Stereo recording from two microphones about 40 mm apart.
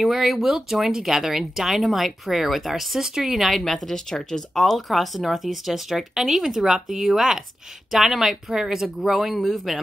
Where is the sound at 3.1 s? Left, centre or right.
Centre.